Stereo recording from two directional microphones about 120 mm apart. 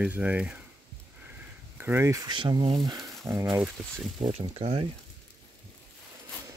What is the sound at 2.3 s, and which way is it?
Speech, 40° right (ahead or behind).